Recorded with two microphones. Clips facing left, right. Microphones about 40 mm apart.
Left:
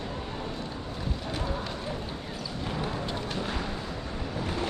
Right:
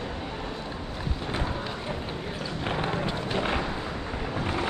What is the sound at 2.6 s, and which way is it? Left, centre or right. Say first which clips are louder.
Music: right 4 dB; right.